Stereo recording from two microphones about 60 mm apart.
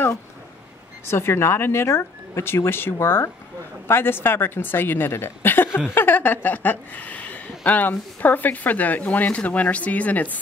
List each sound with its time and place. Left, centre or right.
1.1 s a woman's voice: left